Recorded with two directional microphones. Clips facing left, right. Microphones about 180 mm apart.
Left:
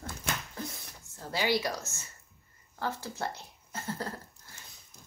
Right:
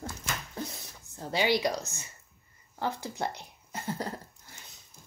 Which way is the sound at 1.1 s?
20° right (ahead or behind).